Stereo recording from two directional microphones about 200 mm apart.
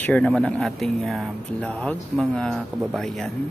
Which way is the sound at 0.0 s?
5° left (ahead or behind).